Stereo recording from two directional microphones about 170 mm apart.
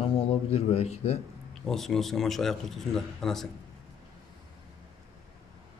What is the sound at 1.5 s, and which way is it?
A man's voice, 5° left (ahead or behind).